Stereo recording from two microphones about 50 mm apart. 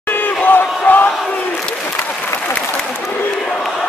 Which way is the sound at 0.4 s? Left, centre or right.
Left.